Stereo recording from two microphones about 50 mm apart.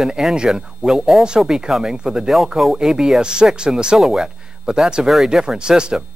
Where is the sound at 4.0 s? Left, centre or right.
Centre.